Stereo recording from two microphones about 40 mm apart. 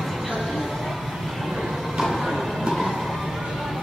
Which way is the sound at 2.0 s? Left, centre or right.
Centre.